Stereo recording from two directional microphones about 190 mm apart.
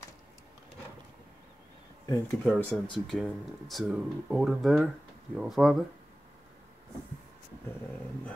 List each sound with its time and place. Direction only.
2.0 s speech: 20° left (ahead or behind)
2.4 s speech: centre (ahead or behind)